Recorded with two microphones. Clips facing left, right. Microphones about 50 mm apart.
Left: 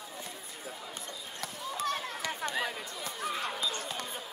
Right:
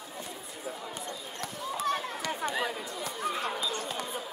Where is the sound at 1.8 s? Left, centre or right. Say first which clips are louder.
Right 2 dB; right.